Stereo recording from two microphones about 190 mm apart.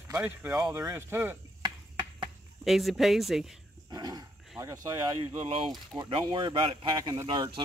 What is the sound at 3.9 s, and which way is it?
Speech, 20° right (ahead or behind).